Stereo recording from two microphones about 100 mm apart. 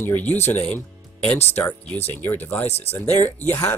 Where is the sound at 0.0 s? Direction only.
15° left (ahead or behind).